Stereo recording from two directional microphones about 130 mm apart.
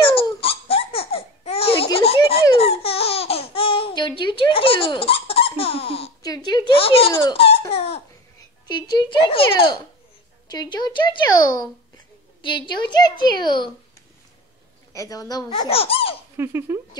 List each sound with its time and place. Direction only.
0.0 s laughter: 45° left (ahead or behind)
2.0 s a sound: 45° left (ahead or behind)
2.5 s laughter: 50° left (ahead or behind)
6.2 s a sound: 30° left (ahead or behind)
7.1 s baby laughter: 20° left (ahead or behind)
7.7 s laughter: 50° left (ahead or behind)
8.6 s a sound: 35° left (ahead or behind)
10.5 s a woman's voice: 35° left (ahead or behind)
12.4 s a woman's voice: 40° left (ahead or behind)
14.9 s a woman's voice: 25° left (ahead or behind)
15.7 s speech: 45° left (ahead or behind)
16.3 s speech: 20° right (ahead or behind)